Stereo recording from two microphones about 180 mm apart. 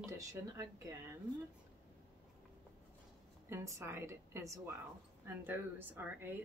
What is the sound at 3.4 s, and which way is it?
Speech, 15° right (ahead or behind).